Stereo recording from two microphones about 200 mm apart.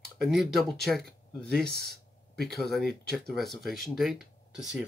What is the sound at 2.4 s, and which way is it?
Speech, centre (ahead or behind).